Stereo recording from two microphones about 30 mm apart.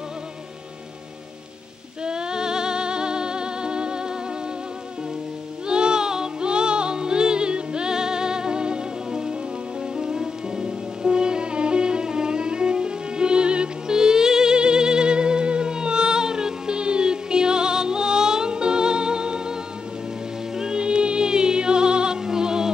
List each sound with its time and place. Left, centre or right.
2.0 s music: right
5.7 s music: right
13.9 s music: right
20.5 s music: right
20.8 s music: right